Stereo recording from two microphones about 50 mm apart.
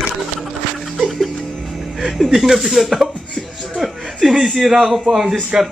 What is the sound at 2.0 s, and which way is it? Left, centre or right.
Speech, centre.